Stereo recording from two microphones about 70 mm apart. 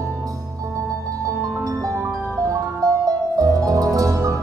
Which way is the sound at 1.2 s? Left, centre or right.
Right.